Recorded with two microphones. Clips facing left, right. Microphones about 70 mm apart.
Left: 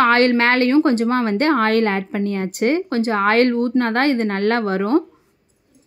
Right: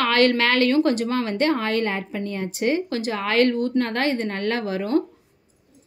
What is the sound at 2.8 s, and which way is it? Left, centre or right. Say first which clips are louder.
A woman's voice: left 8 dB; left.